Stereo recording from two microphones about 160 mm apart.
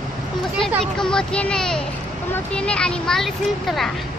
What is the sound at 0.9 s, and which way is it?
Speech, 5° left (ahead or behind).